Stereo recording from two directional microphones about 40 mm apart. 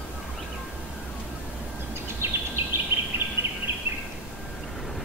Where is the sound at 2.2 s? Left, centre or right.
Right.